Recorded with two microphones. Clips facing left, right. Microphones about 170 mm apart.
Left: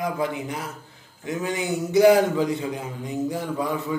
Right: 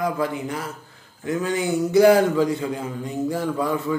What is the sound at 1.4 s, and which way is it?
A man's voice, 20° left (ahead or behind).